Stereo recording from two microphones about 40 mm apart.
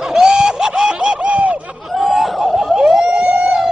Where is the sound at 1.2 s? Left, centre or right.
Right.